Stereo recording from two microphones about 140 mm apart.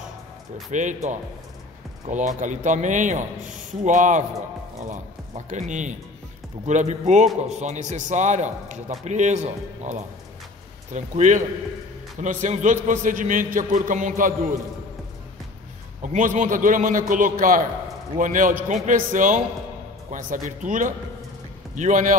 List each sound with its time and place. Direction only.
0.7 s a man's voice: 60° right (ahead or behind)
12.8 s a man's voice: 70° right (ahead or behind)
16.0 s a man's voice: 65° right (ahead or behind)